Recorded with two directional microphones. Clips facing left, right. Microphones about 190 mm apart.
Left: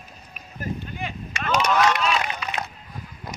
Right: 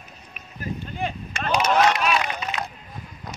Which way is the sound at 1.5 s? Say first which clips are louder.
Right 1 dB; 30° right (ahead or behind).